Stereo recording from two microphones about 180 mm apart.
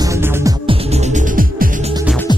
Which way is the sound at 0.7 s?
35° right (ahead or behind).